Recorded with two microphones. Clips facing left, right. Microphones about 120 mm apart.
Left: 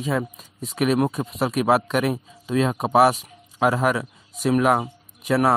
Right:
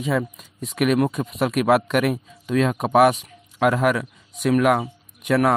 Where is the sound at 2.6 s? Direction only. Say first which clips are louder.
Right 1 dB; 30° left (ahead or behind).